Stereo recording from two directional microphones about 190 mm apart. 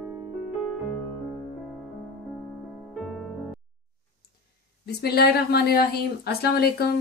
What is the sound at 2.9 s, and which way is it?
Music, centre (ahead or behind).